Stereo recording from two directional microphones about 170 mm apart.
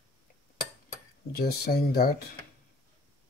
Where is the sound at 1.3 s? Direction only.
65° left (ahead or behind).